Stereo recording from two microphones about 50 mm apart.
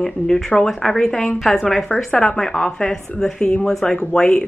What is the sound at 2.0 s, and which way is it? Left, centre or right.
A woman's voice, centre.